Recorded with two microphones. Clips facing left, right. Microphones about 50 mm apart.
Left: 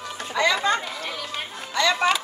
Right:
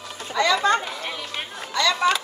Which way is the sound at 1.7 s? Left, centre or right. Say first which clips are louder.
Even; left.